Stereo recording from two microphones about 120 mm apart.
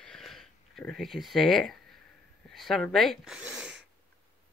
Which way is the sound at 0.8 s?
5° left (ahead or behind).